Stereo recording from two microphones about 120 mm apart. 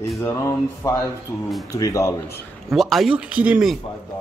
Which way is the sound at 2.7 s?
Centre (ahead or behind).